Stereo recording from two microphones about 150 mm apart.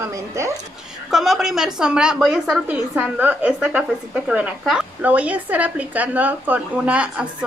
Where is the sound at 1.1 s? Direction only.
Centre (ahead or behind).